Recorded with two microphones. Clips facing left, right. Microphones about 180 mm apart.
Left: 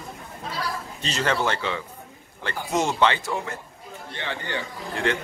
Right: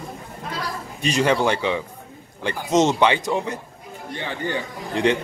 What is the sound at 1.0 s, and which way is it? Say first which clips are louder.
Speech: right 6 dB; 15° right (ahead or behind).